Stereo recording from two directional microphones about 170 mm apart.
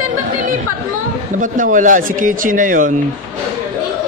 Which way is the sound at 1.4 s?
50° right (ahead or behind).